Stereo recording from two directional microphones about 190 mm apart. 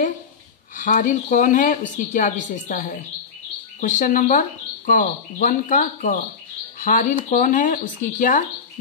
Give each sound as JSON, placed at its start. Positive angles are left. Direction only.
{"t": 0.7, "sound": "speech", "side_deg": 45}